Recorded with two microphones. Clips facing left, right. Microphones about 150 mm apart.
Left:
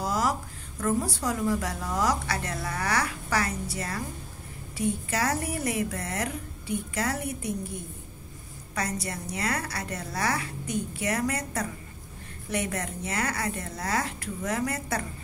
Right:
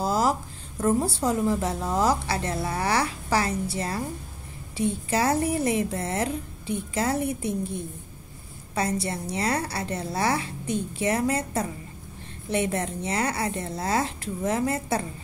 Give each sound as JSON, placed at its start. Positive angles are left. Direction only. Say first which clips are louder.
{"t": 0.0, "sound": "a woman's voice", "louder": "right 4 dB", "side_deg": -30}
{"t": 8.7, "sound": "a woman's voice", "louder": "right 5 dB", "side_deg": -30}